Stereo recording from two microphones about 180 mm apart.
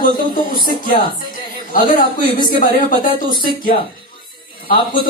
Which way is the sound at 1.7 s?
50° left (ahead or behind).